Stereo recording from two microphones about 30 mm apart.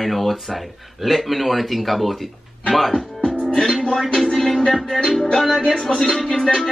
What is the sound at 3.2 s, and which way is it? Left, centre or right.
Music, left.